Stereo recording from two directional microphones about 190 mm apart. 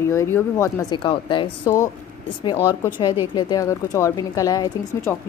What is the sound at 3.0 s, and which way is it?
A woman's voice, 25° left (ahead or behind).